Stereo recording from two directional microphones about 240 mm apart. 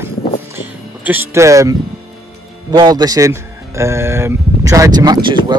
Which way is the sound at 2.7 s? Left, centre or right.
Centre.